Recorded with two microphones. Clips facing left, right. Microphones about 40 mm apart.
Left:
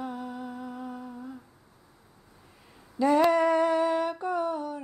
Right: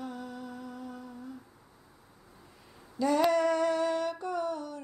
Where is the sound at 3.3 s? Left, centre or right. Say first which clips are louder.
Left 4 dB; centre.